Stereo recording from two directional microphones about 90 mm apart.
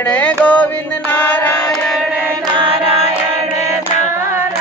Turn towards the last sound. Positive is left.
turn(degrees=-90)